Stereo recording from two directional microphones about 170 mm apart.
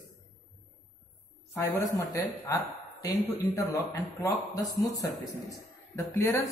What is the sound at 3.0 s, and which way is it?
Speech, 20° left (ahead or behind).